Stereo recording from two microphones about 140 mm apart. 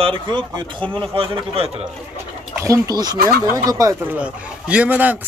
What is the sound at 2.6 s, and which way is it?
Speech, 20° right (ahead or behind).